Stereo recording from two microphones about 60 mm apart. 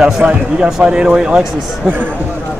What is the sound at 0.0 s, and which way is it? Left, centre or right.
A man's voice, centre.